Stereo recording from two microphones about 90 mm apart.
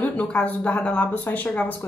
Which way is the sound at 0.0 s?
15° left (ahead or behind).